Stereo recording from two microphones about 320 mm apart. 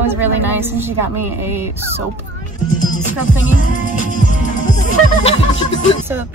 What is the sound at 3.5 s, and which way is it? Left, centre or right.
Music, left.